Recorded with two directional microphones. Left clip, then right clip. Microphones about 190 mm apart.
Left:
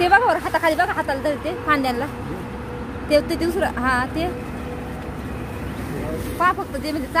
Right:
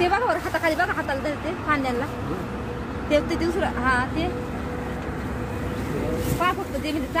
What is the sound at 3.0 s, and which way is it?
Speech, 40° left (ahead or behind).